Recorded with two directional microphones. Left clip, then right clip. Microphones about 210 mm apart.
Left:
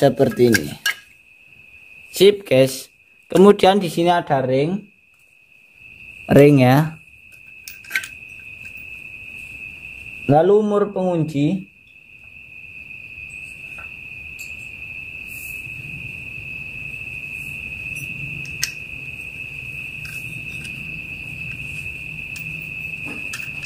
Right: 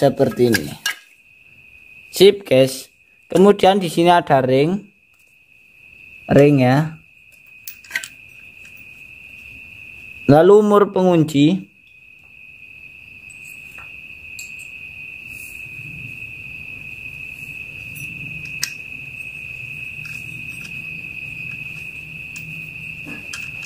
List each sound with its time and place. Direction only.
0.0 s dishes: 5° left (ahead or behind)
2.1 s speech: 10° right (ahead or behind)
3.8 s speech: 20° right (ahead or behind); by 4.8 s 35° right (ahead or behind)
6.2 s dishes: centre (ahead or behind)
10.2 s speech: 30° right (ahead or behind)